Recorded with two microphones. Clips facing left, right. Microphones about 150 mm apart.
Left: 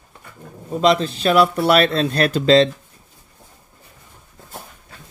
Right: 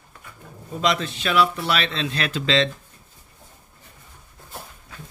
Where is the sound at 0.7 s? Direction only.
35° left (ahead or behind).